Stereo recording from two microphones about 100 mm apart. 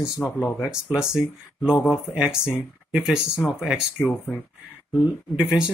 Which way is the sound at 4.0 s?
20° left (ahead or behind).